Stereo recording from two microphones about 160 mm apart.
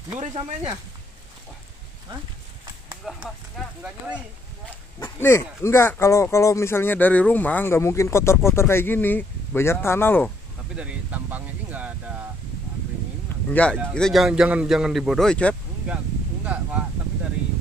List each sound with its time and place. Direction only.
0.2 s speech: 40° right (ahead or behind)
3.2 s speech: 5° right (ahead or behind)
5.0 s speech: 15° left (ahead or behind)
10.8 s speech: 10° right (ahead or behind)
13.5 s speech: 10° left (ahead or behind)
16.5 s speech: 5° right (ahead or behind)